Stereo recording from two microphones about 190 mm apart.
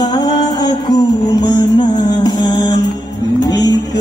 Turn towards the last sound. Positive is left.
turn(degrees=20)  # may be behind; listen again after turning